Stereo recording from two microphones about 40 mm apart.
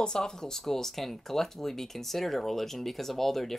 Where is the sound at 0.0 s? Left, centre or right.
Centre.